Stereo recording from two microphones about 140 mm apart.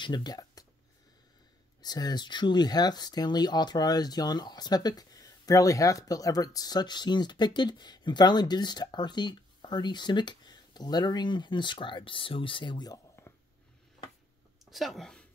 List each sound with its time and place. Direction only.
0.0 s speech: 30° left (ahead or behind)
1.8 s speech: 30° left (ahead or behind)
14.6 s speech: centre (ahead or behind)